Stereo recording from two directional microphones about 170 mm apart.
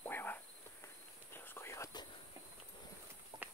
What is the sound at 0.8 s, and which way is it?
Walk, 15° left (ahead or behind).